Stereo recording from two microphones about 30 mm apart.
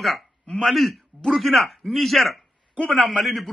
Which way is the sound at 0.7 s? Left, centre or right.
Centre.